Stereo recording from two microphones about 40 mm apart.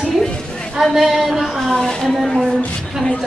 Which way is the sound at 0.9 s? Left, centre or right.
Centre.